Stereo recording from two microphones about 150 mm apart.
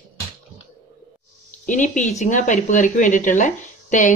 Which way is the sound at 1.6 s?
55° left (ahead or behind).